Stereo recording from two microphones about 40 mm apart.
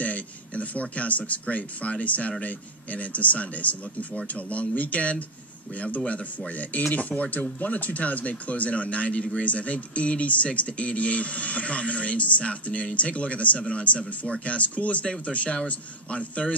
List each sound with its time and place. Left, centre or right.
0.0 s speech: left